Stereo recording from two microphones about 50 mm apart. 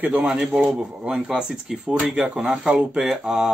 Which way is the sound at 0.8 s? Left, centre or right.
Right.